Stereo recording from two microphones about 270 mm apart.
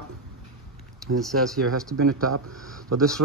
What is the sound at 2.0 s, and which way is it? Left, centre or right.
Speech, right.